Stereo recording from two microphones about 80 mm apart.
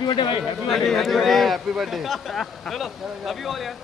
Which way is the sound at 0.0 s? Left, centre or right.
Left.